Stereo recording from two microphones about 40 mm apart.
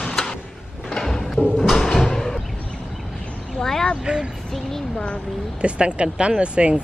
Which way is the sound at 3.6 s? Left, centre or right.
Centre.